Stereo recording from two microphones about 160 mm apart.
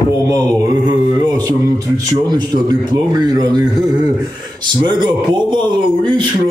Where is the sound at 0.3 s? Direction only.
20° right (ahead or behind).